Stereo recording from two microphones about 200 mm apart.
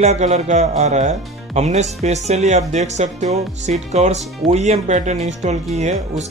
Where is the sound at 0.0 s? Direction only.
35° right (ahead or behind).